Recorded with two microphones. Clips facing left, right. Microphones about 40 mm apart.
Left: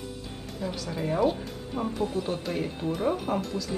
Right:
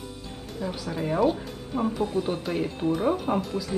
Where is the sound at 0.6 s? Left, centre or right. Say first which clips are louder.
Right 2 dB; centre.